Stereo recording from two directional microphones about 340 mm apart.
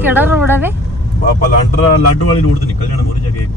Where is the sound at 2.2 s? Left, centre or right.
Left.